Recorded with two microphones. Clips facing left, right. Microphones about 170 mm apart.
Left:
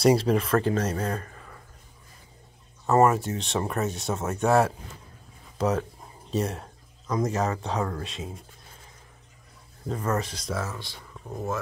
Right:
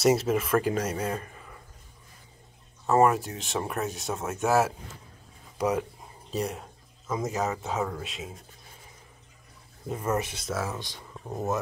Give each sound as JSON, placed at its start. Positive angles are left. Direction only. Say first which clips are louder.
{"t": 0.0, "sound": "speech", "louder": "left 2 dB", "side_deg": -5}
{"t": 2.9, "sound": "speech", "louder": "left 1 dB", "side_deg": 0}
{"t": 6.3, "sound": "speech", "louder": "left 3 dB", "side_deg": 0}
{"t": 9.8, "sound": "speech", "louder": "left 1 dB", "side_deg": -10}
{"t": 10.7, "sound": "speech", "louder": "right 2 dB", "side_deg": -15}